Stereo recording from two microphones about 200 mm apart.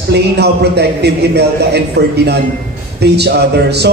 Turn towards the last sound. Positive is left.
turn(degrees=-55)  # may be behind; listen again after turning